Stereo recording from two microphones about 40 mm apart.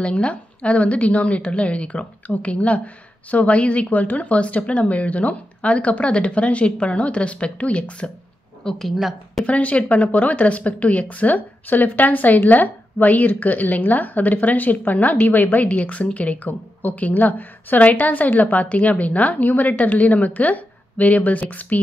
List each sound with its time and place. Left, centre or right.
0.0 s speech: left
8.6 s a woman's voice: centre
9.5 s a woman's voice: left